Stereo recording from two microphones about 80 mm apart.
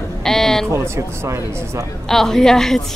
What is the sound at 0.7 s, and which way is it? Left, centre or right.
Speech, right.